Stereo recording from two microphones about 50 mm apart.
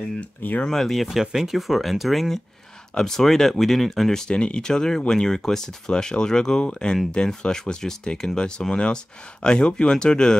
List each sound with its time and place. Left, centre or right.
0.2 s speech: left
0.7 s speech: centre
1.2 s speech: centre